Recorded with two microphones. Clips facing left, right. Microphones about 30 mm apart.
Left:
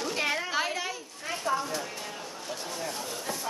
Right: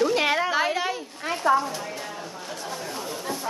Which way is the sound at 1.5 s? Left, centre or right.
Right.